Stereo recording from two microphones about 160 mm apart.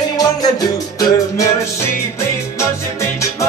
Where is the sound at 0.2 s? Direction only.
25° left (ahead or behind).